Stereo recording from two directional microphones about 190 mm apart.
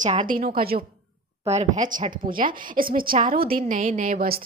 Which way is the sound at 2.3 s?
45° right (ahead or behind).